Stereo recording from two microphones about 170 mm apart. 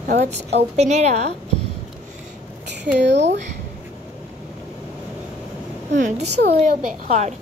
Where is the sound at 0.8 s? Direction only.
40° right (ahead or behind).